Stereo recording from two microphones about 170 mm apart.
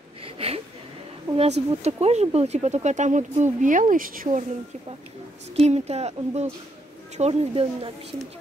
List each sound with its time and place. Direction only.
0.2 s a sound: 35° right (ahead or behind)
1.3 s speech: 15° right (ahead or behind)
1.7 s speech: 40° right (ahead or behind)
5.6 s speech: 40° right (ahead or behind)